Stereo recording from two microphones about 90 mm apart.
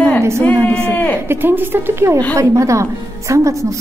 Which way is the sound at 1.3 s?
25° right (ahead or behind).